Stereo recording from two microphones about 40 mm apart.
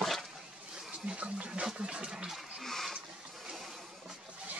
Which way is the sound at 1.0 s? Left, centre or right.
Right.